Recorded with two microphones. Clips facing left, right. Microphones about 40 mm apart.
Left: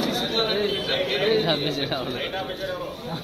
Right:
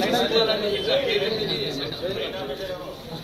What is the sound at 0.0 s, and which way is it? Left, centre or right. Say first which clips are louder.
Chatter: right 4 dB; right.